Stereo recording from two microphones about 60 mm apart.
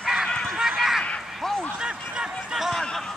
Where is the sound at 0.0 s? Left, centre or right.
Centre.